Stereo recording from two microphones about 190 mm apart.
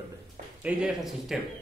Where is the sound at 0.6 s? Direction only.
5° right (ahead or behind).